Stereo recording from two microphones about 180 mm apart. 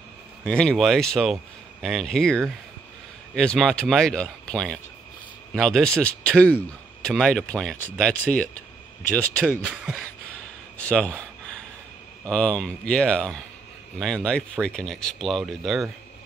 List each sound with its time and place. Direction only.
0.4 s a man's voice: 5° left (ahead or behind)
9.7 s a man's voice: 5° right (ahead or behind)
10.8 s a sound: 5° left (ahead or behind)
12.3 s a man's voice: 5° left (ahead or behind)